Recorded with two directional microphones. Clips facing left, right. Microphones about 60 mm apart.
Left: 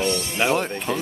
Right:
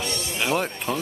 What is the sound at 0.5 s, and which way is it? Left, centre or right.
Speech, centre.